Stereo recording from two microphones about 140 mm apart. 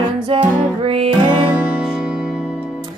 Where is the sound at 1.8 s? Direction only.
5° right (ahead or behind).